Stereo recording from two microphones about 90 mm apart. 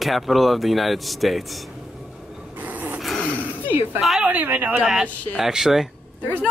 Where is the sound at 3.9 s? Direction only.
5° right (ahead or behind).